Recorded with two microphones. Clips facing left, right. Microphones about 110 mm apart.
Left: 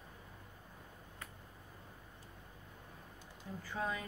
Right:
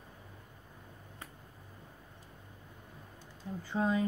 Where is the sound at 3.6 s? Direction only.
25° right (ahead or behind).